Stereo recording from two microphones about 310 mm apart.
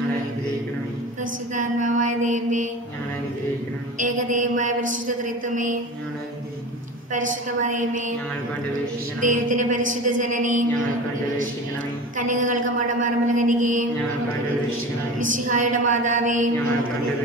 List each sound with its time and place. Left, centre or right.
1.5 s mantra: right
4.0 s a woman's voice: right
7.2 s a woman's voice: right
9.2 s a woman's voice: right
12.2 s a woman's voice: right
15.1 s a woman's voice: right